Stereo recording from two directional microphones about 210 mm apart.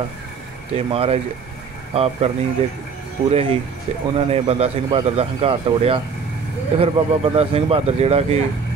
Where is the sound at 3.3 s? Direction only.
25° right (ahead or behind).